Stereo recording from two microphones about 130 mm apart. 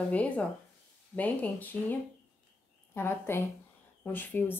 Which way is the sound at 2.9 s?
20° left (ahead or behind).